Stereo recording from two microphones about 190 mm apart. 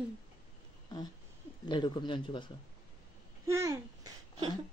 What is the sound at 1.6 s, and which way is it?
Speech, 25° left (ahead or behind).